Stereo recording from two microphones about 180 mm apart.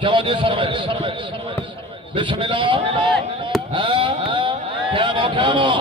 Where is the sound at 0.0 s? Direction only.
30° right (ahead or behind).